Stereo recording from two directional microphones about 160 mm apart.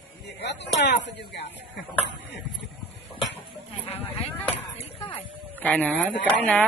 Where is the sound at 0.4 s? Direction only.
90° left.